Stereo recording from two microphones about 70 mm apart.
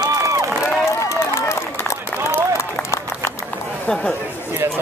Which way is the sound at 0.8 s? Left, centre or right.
Left.